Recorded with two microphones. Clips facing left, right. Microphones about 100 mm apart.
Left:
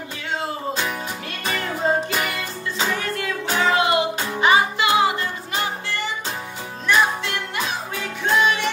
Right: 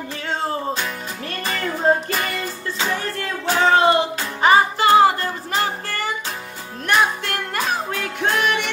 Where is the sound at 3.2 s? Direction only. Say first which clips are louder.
Right 4 dB; 35° right (ahead or behind); by 8.5 s 55° right (ahead or behind).